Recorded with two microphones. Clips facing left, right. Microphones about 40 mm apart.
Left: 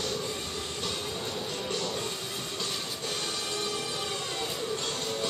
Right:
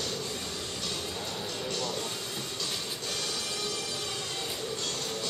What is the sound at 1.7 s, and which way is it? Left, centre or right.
Music, centre.